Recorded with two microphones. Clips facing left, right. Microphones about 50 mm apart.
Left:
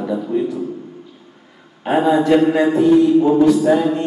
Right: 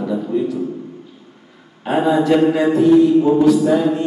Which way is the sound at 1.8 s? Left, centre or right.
Centre.